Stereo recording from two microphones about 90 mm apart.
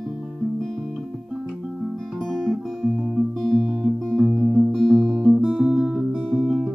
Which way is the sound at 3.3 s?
5° left (ahead or behind).